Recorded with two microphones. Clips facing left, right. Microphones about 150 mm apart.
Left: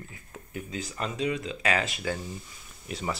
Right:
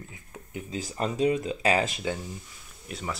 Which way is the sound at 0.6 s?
35° right (ahead or behind).